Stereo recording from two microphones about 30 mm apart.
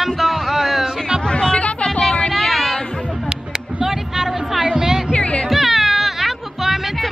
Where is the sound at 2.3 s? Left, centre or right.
Centre.